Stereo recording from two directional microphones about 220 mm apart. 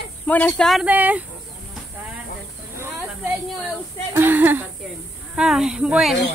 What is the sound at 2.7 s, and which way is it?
Snake, 10° right (ahead or behind).